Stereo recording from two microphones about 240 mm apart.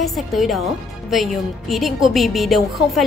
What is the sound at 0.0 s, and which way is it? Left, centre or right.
A woman's voice, centre.